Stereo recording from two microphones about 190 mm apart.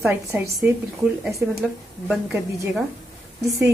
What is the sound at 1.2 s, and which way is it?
A woman's voice, centre (ahead or behind).